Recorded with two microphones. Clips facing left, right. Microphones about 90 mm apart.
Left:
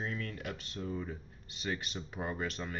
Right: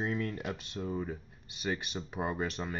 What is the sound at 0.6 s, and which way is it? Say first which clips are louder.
Speech: right 3 dB; 15° right (ahead or behind).